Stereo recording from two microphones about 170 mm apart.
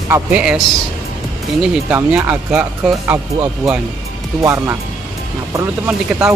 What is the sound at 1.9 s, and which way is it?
Speech, 10° right (ahead or behind).